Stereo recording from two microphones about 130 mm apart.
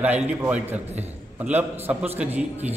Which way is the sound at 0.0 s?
15° right (ahead or behind).